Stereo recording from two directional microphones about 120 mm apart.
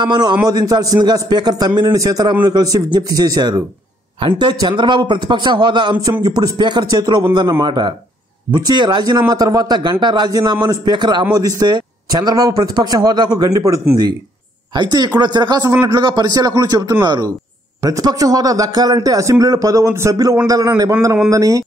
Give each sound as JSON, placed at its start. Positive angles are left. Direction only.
{"t": 0.0, "sound": "a man's voice", "side_deg": -40}
{"t": 4.2, "sound": "a man's voice", "side_deg": -45}